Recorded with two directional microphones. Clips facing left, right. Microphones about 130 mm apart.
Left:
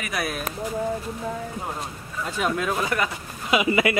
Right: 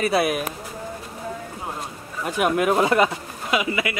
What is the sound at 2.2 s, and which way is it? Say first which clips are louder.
Speech: right 5 dB; 15° right (ahead or behind).